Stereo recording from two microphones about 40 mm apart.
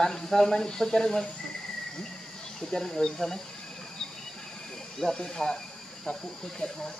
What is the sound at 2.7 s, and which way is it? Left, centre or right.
Speech, centre.